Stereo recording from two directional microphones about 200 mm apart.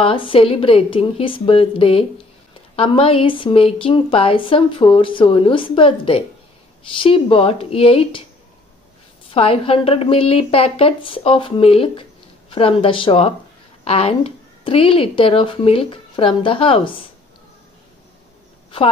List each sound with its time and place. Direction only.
0.0 s a woman's voice: 25° left (ahead or behind)
9.3 s a woman's voice: 30° left (ahead or behind)